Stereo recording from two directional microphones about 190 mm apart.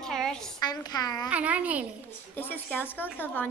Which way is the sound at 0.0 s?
5° left (ahead or behind).